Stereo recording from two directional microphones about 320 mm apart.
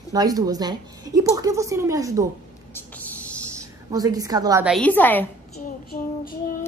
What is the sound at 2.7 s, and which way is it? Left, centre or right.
Vehicle, centre.